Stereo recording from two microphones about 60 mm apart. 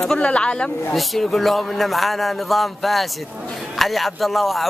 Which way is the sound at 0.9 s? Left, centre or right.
Centre.